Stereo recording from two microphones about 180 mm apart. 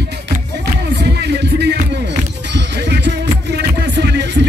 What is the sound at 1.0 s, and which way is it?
Music, 70° right (ahead or behind).